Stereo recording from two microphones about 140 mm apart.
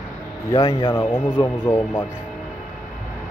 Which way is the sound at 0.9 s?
15° left (ahead or behind).